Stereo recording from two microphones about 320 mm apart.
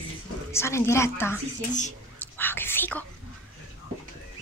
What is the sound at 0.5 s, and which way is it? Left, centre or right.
Speech, centre.